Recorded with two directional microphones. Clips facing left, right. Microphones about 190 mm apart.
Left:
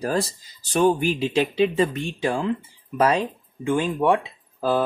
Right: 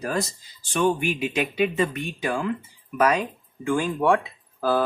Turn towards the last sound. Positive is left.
turn(degrees=20)  # may be behind; listen again after turning